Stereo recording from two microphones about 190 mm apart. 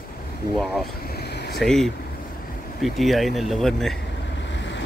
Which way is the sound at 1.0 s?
55° left (ahead or behind).